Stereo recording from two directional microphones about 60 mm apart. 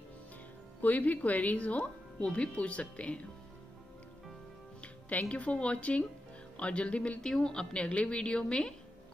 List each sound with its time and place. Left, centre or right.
0.7 s speech: left
5.1 s speech: left
7.2 s a woman's voice: centre